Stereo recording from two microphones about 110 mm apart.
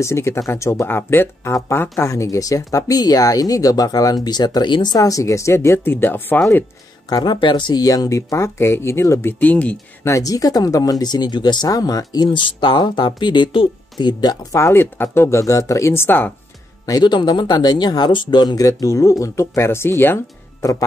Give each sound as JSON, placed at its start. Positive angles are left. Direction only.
{"t": 0.0, "sound": "speech", "side_deg": 25}
{"t": 4.9, "sound": "speech", "side_deg": 30}
{"t": 7.1, "sound": "speech", "side_deg": 35}
{"t": 9.4, "sound": "speech", "side_deg": 10}
{"t": 10.0, "sound": "speech", "side_deg": 30}
{"t": 14.5, "sound": "speech", "side_deg": 25}
{"t": 16.8, "sound": "speech", "side_deg": 40}